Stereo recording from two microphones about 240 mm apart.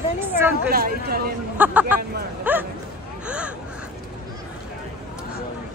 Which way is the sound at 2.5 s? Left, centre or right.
Centre.